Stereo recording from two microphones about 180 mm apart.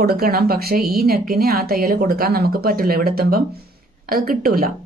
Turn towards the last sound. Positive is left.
turn(degrees=-55)  # may be behind; listen again after turning